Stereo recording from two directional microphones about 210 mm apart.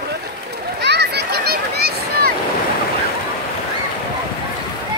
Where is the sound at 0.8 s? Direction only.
50° right (ahead or behind).